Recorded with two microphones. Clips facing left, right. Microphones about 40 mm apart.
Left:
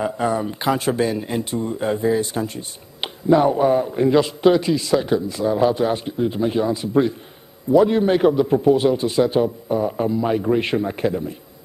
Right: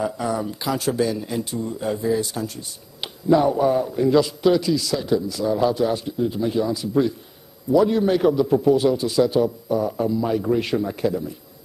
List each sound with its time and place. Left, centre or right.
0.0 s speech: left